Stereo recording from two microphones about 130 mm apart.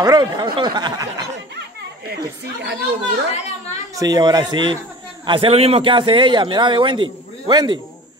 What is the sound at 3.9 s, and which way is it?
A man's voice, 30° right (ahead or behind).